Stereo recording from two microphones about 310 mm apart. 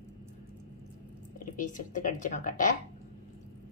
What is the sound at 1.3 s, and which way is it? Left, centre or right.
A woman's voice, left.